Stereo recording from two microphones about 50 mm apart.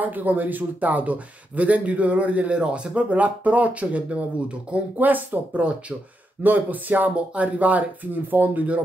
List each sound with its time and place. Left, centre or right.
0.0 s speech: right
6.4 s speech: right